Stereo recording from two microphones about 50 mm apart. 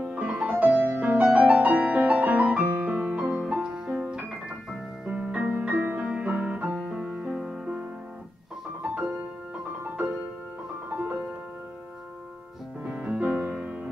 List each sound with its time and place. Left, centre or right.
0.1 s music: right
5.0 s music: right
5.6 s music: right
6.9 s music: centre
10.9 s music: right
12.8 s music: right